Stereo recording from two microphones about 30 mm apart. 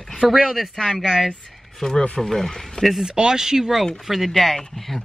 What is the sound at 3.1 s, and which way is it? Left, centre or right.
Speech, right.